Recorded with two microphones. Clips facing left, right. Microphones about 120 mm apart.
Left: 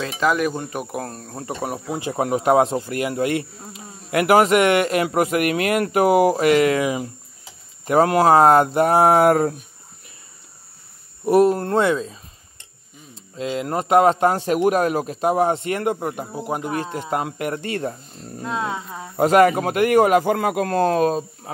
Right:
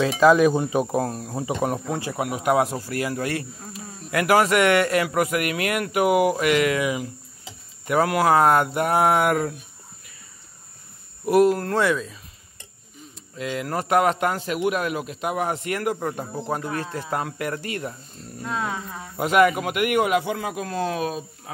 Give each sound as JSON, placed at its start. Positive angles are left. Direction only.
{"t": 0.5, "sound": "speech", "side_deg": -10}
{"t": 2.1, "sound": "speech", "side_deg": 35}
{"t": 11.2, "sound": "speech", "side_deg": 30}
{"t": 18.4, "sound": "speech", "side_deg": 20}
{"t": 19.1, "sound": "a man's voice", "side_deg": 35}